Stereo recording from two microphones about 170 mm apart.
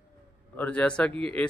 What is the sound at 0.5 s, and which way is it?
Speech, 10° left (ahead or behind).